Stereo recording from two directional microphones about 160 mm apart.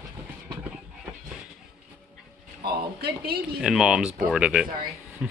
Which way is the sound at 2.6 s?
80° right.